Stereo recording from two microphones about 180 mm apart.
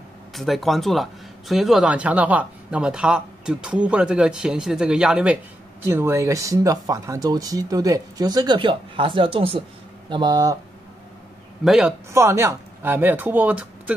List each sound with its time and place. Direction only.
0.3 s speech: centre (ahead or behind); by 10.6 s 20° right (ahead or behind)
11.6 s speech: 5° right (ahead or behind)
12.1 s speech: 15° right (ahead or behind)